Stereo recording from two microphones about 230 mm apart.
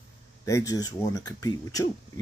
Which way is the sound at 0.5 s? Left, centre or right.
Centre.